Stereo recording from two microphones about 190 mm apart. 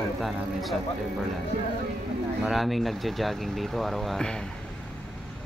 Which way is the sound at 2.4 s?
Centre (ahead or behind).